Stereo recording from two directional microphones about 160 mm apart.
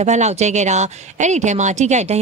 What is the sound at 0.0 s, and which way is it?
Speech, 45° right (ahead or behind).